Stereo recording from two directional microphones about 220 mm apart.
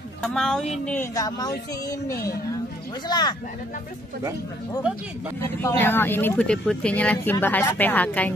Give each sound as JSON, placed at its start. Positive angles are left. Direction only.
{"t": 0.2, "sound": "speech", "side_deg": 0}
{"t": 5.4, "sound": "speech", "side_deg": 10}